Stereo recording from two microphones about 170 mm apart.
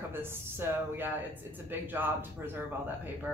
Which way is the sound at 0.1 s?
15° right (ahead or behind).